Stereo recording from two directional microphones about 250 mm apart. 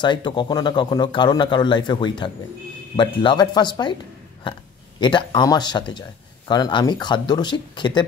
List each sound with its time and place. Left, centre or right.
0.0 s speech: centre
5.0 s speech: centre